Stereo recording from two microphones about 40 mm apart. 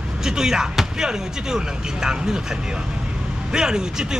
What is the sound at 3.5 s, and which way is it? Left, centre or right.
Speech, centre.